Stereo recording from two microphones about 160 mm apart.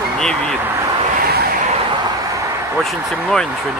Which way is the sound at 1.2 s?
80° right.